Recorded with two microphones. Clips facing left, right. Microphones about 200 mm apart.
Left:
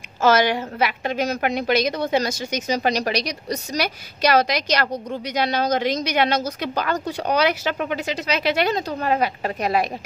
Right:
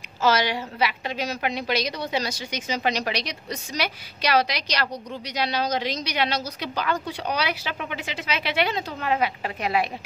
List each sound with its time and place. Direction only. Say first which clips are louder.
0.2 s a woman's voice: left 5 dB; 50° left (ahead or behind)